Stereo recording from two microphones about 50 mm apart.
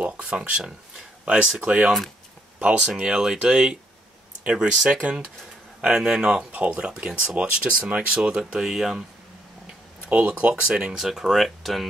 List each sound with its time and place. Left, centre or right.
0.0 s speech: right
6.5 s speech: right
6.8 s speech: centre
10.0 s speech: right
11.0 s speech: centre